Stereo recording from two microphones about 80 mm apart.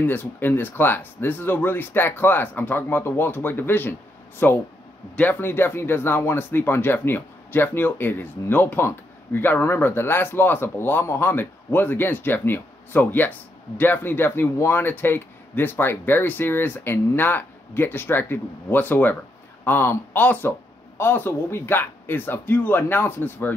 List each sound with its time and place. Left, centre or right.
0.0 s speech: left